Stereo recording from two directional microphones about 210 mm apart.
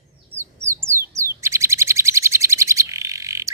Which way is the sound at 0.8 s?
15° right (ahead or behind).